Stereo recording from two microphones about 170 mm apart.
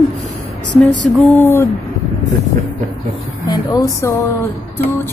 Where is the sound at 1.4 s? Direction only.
10° left (ahead or behind).